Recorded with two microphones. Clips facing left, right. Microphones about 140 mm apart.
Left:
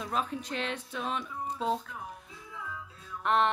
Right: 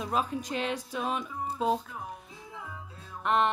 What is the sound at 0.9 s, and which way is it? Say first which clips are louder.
Music: right 3 dB; 10° right (ahead or behind).